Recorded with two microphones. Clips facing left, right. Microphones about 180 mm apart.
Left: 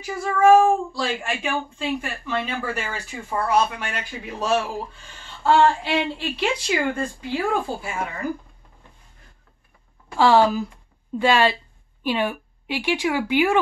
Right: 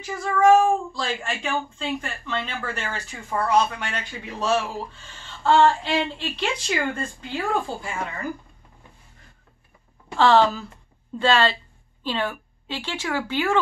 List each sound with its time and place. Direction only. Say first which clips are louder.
0.0 s speech: left 1 dB; 10° left (ahead or behind)
10.1 s speech: left 1 dB; 10° left (ahead or behind)